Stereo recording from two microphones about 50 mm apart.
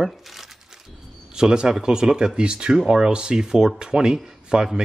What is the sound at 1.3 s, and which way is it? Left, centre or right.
Speech, centre.